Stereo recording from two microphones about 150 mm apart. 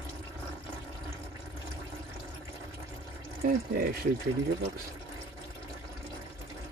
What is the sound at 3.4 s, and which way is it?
Speech, 90° right.